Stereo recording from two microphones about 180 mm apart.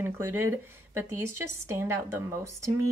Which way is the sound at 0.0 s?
10° right (ahead or behind).